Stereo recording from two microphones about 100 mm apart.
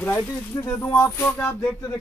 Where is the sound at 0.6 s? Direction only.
30° left (ahead or behind).